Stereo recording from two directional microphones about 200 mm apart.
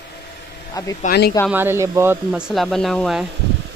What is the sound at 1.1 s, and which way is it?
Speech, 50° left (ahead or behind).